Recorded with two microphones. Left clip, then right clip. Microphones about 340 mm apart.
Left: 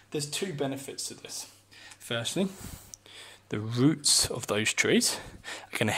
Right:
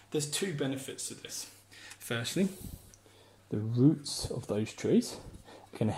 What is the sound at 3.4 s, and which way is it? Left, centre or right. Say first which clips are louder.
Speech: left 1 dB; left.